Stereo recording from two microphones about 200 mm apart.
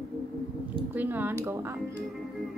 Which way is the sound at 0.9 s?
10° right (ahead or behind).